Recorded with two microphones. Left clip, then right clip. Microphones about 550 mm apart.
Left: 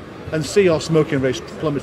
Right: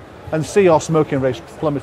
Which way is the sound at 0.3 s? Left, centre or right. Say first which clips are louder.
Right 3 dB; right.